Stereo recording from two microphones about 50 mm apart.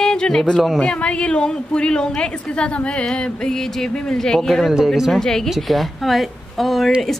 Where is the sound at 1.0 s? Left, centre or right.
Left.